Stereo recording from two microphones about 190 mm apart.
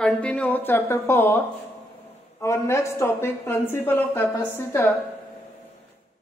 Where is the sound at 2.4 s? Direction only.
15° left (ahead or behind).